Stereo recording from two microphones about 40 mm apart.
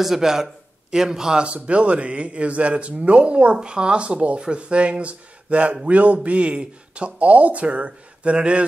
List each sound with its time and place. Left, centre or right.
0.0 s a man's voice: centre
1.4 s speech: right